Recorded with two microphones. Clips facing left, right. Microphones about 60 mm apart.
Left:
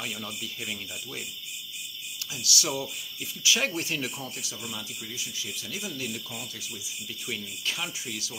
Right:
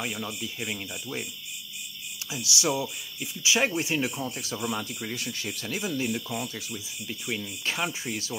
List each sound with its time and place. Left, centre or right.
0.0 s speech: right
2.3 s speech: right
4.4 s speech: right